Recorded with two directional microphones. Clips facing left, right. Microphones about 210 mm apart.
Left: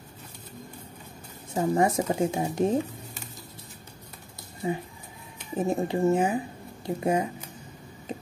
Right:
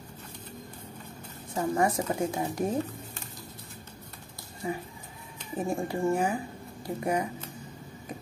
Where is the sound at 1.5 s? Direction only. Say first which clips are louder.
Left 3 dB; 25° left (ahead or behind).